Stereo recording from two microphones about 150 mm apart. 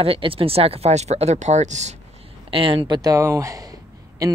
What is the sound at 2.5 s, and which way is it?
Speech, 35° right (ahead or behind).